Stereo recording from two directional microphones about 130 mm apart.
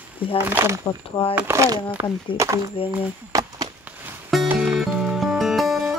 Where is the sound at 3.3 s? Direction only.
25° right (ahead or behind).